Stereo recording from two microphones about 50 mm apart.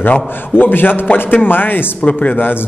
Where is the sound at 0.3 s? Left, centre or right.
Left.